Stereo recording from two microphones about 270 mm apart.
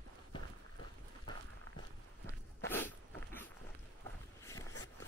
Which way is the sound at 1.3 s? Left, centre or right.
Centre.